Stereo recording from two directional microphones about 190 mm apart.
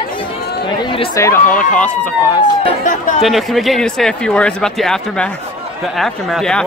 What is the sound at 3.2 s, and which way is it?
Speech, centre (ahead or behind).